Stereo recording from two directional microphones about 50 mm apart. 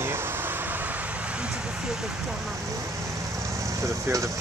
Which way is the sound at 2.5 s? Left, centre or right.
Right.